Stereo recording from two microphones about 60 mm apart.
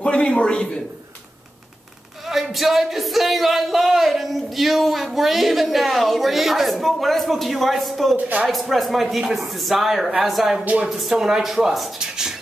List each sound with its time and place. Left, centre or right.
0.0 s a man's voice: centre
2.2 s speech: centre
8.2 s speech: right
8.5 s speech: centre
10.6 s speech: right
10.9 s speech: centre